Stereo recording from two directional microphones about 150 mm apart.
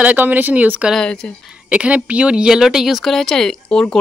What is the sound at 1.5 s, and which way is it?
Speech, 10° right (ahead or behind).